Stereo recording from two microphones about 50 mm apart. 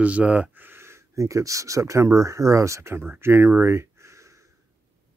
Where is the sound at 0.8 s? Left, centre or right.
Right.